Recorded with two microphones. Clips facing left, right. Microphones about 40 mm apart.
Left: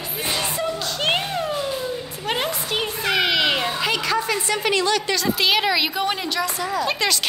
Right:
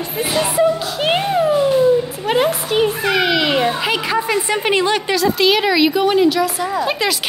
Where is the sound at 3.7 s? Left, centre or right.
Centre.